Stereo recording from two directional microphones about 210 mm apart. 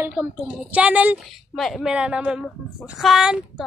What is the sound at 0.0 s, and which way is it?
A woman's voice, 5° right (ahead or behind).